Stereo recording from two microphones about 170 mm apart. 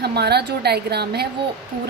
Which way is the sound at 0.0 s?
70° right (ahead or behind).